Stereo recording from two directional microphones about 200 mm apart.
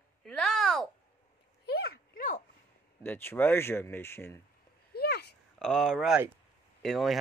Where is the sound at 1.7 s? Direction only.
50° left (ahead or behind).